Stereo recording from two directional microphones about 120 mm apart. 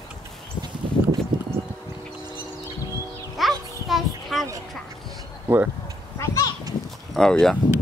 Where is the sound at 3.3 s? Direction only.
Centre (ahead or behind).